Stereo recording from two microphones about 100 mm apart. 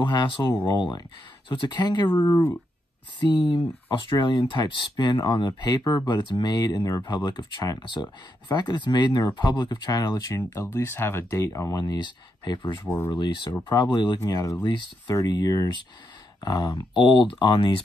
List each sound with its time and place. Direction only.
0.0 s speech: 50° left (ahead or behind); by 11.7 s 30° left (ahead or behind)
11.7 s speech: 45° left (ahead or behind)
14.2 s speech: 35° left (ahead or behind)
14.6 s speech: 50° left (ahead or behind)